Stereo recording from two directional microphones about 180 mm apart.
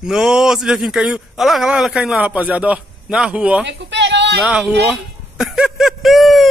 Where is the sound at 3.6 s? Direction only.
75° right (ahead or behind).